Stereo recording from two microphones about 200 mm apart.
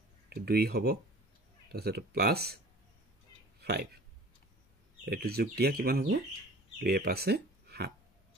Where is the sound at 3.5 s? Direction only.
55° right (ahead or behind).